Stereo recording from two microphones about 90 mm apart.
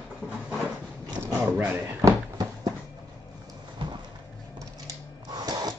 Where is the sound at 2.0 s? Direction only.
50° right (ahead or behind).